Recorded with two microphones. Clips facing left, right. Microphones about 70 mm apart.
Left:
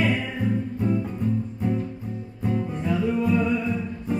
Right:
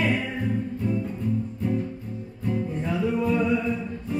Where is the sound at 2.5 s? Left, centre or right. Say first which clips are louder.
Left 2 dB; centre.